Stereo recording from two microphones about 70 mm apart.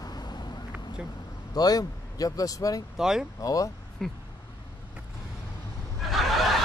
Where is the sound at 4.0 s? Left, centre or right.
Centre.